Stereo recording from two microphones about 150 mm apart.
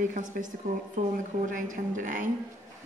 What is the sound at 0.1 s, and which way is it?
A woman's voice, 60° right (ahead or behind).